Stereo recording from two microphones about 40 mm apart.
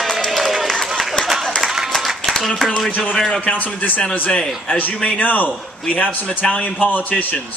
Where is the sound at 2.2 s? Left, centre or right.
Centre.